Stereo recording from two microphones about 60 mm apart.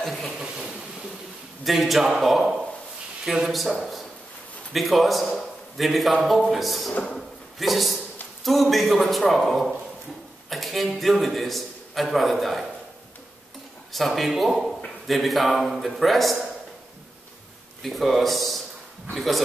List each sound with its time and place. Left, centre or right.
0.0 s speech: centre
0.4 s speech: centre
1.6 s a man's voice: centre
6.9 s speech: centre
7.2 s drawer open or close: centre
8.5 s a man's voice: centre
13.9 s a man's voice: centre
17.8 s a man's voice: centre